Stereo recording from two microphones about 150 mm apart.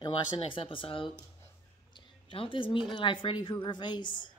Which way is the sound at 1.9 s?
35° left (ahead or behind).